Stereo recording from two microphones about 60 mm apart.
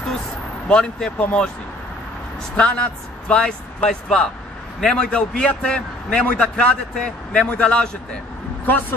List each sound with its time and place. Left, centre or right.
0.7 s speech: centre
2.5 s speech: centre